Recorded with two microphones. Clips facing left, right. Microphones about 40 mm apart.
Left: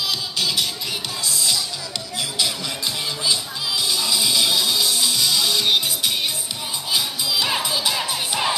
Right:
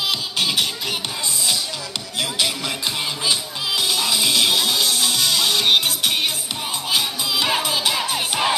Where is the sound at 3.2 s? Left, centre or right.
Right.